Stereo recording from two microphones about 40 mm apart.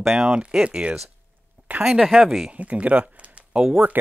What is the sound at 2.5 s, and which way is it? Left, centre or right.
Speech, right.